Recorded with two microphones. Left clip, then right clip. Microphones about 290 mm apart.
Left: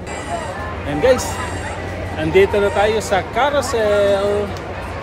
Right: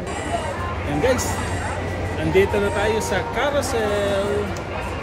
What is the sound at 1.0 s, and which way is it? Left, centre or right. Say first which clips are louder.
Speech: left 6 dB; centre.